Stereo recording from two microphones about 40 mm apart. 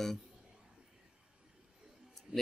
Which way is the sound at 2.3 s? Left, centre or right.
Right.